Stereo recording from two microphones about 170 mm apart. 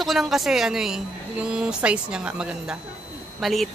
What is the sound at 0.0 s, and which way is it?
Speech, centre (ahead or behind).